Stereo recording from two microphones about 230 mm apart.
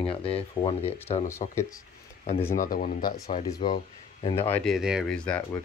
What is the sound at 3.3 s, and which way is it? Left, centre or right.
Speech, left.